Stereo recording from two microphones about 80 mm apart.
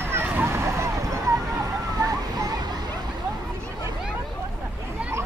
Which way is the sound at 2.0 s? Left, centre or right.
Right.